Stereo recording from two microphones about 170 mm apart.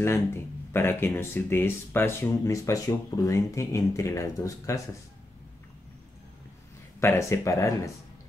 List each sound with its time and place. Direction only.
0.0 s speech: 15° left (ahead or behind)
7.0 s speech: 15° left (ahead or behind)